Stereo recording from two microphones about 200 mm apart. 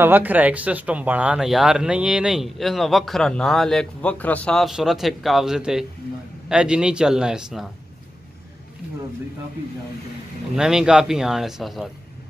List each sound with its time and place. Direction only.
0.0 s speech: 10° right (ahead or behind)
10.5 s speech: 5° right (ahead or behind)